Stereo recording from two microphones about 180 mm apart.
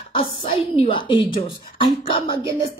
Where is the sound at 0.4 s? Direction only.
30° left (ahead or behind).